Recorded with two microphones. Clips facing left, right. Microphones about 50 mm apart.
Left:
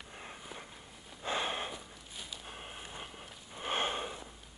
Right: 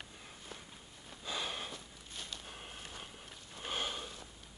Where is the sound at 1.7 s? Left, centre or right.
Centre.